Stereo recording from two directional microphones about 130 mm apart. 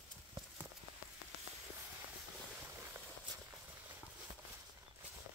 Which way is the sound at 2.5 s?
15° right (ahead or behind).